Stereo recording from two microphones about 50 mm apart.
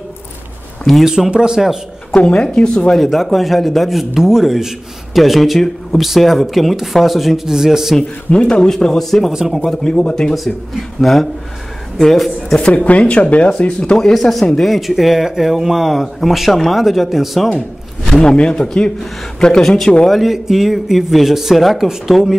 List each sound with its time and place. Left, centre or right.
1.0 s speech: centre
2.1 s speech: left
3.0 s speech: centre
8.3 s speech: centre
9.3 s speech: centre
9.9 s speech: centre
10.3 s speech: centre
12.6 s speech: left
14.6 s speech: centre
18.2 s speech: centre
20.1 s speech: centre